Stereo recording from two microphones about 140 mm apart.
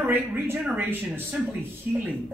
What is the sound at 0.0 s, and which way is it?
Speech, 15° right (ahead or behind).